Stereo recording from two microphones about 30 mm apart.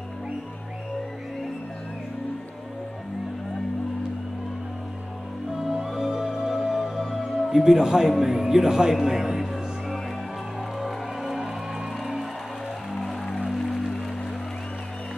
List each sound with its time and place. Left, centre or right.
5.7 s music: centre
8.3 s speech: centre
10.8 s music: centre
12.9 s music: centre